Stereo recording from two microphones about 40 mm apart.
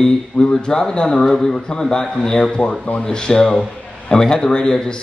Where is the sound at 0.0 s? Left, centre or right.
Left.